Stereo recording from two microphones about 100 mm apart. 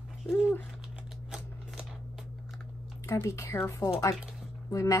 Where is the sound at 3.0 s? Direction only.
25° left (ahead or behind).